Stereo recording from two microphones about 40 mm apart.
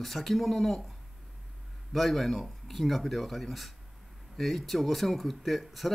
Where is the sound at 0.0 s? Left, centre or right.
Centre.